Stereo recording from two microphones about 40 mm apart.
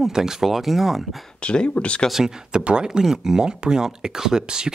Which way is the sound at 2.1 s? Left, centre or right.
Centre.